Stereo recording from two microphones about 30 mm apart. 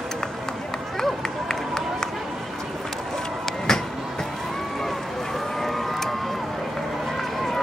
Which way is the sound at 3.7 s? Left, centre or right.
Centre.